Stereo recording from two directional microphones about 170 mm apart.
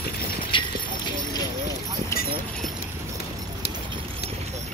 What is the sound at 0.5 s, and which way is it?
Clip-clop, 30° left (ahead or behind).